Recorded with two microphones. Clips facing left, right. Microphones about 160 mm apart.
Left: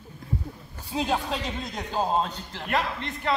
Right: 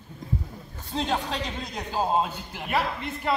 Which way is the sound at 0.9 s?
5° left (ahead or behind).